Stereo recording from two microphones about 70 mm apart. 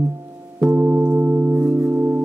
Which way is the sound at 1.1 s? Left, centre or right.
Right.